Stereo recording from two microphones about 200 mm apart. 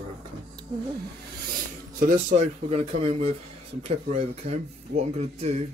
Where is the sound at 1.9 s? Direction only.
40° right (ahead or behind).